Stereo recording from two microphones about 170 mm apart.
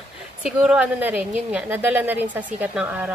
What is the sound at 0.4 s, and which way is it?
Speech, 5° right (ahead or behind).